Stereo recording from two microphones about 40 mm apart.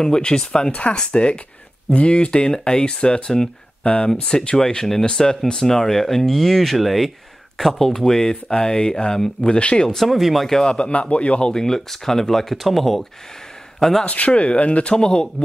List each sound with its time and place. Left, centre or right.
0.0 s speech: centre
0.7 s speech: left
0.9 s speech: centre
2.4 s speech: centre
4.6 s speech: centre
9.6 s speech: left
9.8 s speech: centre
10.5 s speech: centre
10.8 s speech: left; by 14.0 s centre
14.0 s speech: left